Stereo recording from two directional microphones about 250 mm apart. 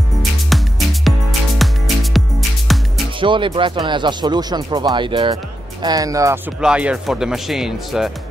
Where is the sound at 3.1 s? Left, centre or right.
Centre.